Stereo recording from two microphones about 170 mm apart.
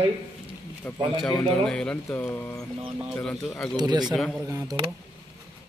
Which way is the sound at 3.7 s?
25° right (ahead or behind).